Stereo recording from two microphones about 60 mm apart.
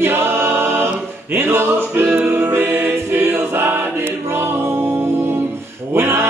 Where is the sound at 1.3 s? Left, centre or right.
Right.